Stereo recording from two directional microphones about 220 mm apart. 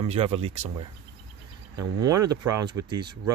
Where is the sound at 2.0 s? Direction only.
15° right (ahead or behind).